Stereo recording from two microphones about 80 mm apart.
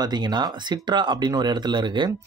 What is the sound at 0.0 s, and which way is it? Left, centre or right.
Speech, right.